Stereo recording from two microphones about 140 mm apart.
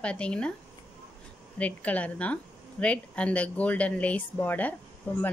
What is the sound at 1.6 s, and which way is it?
Speech, 10° left (ahead or behind).